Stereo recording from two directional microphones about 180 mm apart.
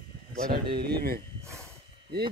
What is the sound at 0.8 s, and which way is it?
Speech, 60° right (ahead or behind).